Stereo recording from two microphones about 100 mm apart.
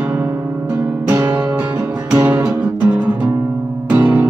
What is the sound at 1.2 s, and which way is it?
Music, 15° right (ahead or behind).